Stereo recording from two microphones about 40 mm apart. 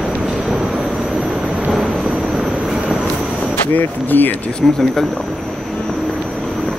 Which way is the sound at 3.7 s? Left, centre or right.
Left.